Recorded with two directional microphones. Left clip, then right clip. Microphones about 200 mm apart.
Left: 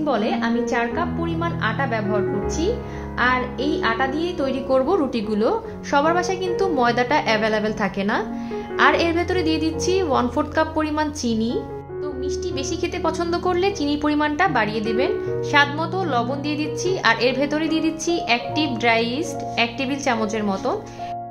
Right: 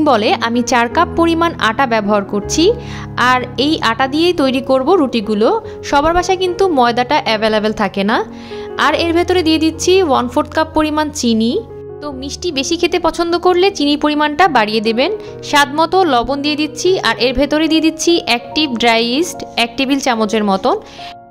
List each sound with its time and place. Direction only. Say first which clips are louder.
0.0 s a woman's voice: right 10 dB; 50° right (ahead or behind)